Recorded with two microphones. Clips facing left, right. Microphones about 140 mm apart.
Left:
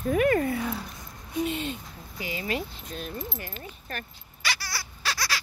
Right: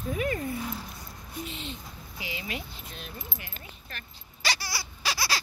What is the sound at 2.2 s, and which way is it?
Speech, 45° left (ahead or behind).